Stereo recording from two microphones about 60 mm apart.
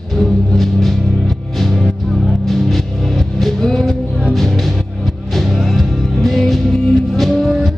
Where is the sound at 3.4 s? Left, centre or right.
Centre.